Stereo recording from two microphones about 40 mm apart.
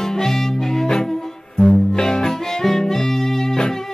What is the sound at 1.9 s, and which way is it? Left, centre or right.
Music, centre.